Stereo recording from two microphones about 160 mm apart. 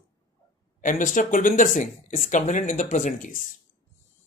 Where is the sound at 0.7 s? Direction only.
55° left (ahead or behind).